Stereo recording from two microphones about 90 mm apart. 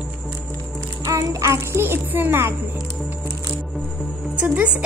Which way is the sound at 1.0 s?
35° right (ahead or behind).